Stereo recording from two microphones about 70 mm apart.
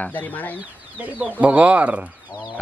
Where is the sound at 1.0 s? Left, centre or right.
Centre.